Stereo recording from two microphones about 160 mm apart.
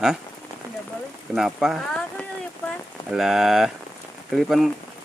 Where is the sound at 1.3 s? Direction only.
Centre (ahead or behind).